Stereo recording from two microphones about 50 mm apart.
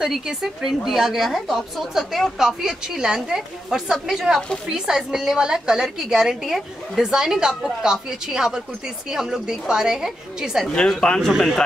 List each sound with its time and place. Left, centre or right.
0.0 s a woman's voice: centre
10.7 s speech: centre
11.2 s speech: centre